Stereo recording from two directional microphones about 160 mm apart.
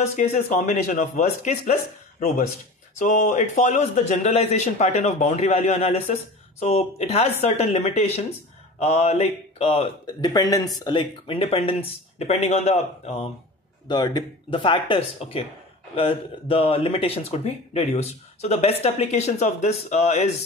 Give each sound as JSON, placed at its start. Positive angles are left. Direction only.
{"t": 0.1, "sound": "a man's voice", "side_deg": 45}
{"t": 10.2, "sound": "speech", "side_deg": 25}
{"t": 13.8, "sound": "speech", "side_deg": 25}